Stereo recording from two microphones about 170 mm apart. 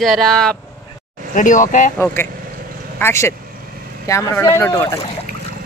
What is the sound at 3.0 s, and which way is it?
Speech, 15° left (ahead or behind).